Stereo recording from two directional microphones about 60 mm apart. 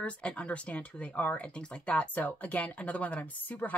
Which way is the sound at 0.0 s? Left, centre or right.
Left.